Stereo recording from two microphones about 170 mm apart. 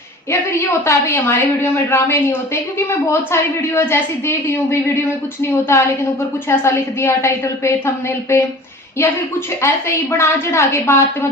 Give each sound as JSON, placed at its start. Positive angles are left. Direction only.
{"t": 0.8, "sound": "a woman's voice", "side_deg": 15}